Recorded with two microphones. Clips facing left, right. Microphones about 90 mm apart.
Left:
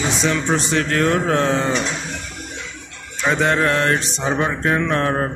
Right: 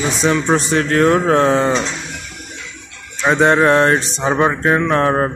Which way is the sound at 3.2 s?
35° right (ahead or behind).